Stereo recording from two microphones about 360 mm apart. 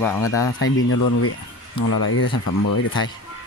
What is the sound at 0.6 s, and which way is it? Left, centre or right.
Speech, left.